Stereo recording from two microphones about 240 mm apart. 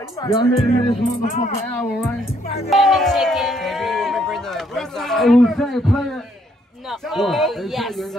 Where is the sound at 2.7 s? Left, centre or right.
Centre.